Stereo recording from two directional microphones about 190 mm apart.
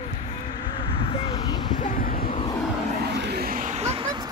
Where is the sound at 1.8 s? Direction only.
45° left (ahead or behind).